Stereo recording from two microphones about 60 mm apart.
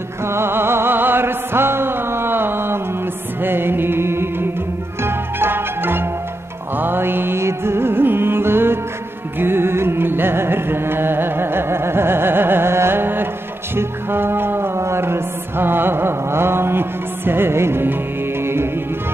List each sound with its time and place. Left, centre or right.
0.2 s music: right
14.8 s mantra: right
18.4 s music: right